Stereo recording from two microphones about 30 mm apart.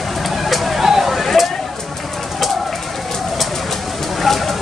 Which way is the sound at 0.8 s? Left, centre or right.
Centre.